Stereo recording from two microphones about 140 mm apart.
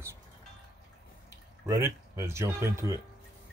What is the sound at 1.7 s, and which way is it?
Speech, 20° right (ahead or behind).